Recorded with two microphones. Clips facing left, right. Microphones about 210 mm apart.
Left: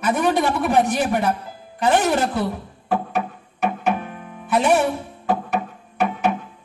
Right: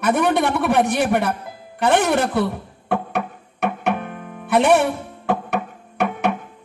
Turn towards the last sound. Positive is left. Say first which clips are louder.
# even
turn(degrees=-60)  # may be behind; listen again after turning